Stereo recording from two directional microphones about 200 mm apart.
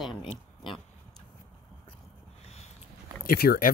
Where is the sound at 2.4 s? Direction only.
30° left (ahead or behind).